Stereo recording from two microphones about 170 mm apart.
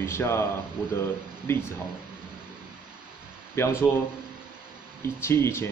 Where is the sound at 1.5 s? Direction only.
15° left (ahead or behind).